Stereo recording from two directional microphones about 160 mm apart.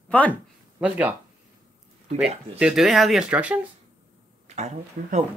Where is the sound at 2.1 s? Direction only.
5° right (ahead or behind).